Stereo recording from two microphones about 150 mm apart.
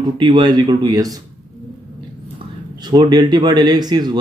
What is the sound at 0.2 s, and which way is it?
Speech, 30° right (ahead or behind).